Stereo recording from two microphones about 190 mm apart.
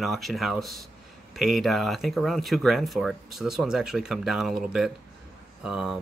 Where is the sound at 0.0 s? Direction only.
Centre (ahead or behind).